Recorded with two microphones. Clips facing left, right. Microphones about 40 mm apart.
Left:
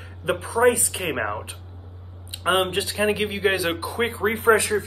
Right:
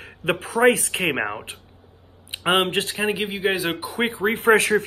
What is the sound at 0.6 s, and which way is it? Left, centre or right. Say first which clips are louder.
Speech: right 2 dB; right.